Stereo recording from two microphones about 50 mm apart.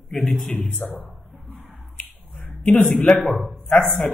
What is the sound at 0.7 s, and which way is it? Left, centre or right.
Speech, left.